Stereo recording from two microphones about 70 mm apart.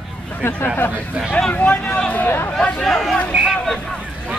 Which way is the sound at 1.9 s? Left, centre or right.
Left.